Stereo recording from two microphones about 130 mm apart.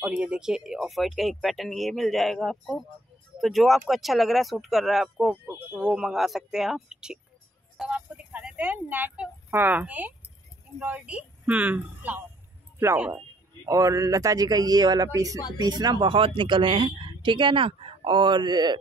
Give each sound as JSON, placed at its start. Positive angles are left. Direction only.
{"t": 0.0, "sound": "speech", "side_deg": -10}
{"t": 5.3, "sound": "a woman's voice", "side_deg": -15}